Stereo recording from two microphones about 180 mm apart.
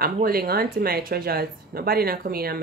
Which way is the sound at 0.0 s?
55° right (ahead or behind).